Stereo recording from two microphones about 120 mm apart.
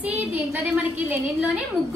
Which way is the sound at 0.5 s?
15° right (ahead or behind).